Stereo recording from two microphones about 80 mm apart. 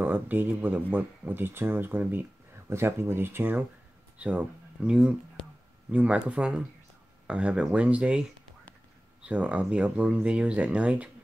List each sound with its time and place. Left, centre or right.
0.0 s speech: right
4.2 s speech: centre
9.2 s speech: centre